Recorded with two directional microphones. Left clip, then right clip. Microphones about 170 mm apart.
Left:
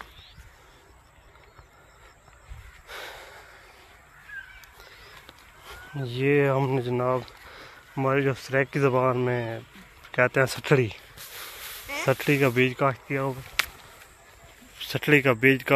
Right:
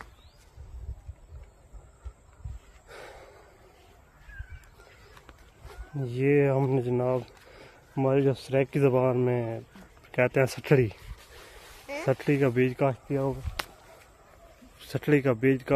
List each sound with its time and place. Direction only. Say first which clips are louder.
2.9 s gasp: left 6 dB; 20° right (ahead or behind)
5.9 s speech: left 1 dB; 20° right (ahead or behind)
7.2 s a sound: left 6 dB; 30° right (ahead or behind)
8.5 s speech: left 1 dB; 30° right (ahead or behind)
12.1 s speech: left 3 dB; 5° right (ahead or behind)
12.7 s speech: left 2 dB; 25° right (ahead or behind)
14.8 s speech: left 4 dB; 15° right (ahead or behind)